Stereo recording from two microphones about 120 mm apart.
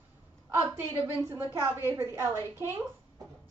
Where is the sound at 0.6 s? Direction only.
25° right (ahead or behind).